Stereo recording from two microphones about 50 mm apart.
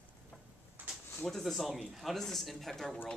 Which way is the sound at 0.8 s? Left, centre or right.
Right.